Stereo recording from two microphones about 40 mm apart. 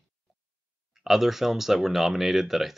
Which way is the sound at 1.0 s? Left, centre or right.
Centre.